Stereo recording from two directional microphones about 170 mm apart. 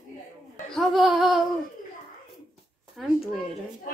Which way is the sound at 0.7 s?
Centre (ahead or behind).